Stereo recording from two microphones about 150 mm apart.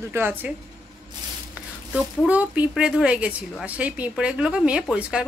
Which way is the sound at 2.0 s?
10° right (ahead or behind).